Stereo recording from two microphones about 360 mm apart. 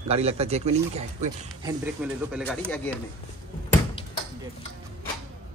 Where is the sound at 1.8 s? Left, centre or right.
Centre.